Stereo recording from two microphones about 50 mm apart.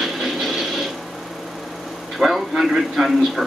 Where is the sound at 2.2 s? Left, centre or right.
Centre.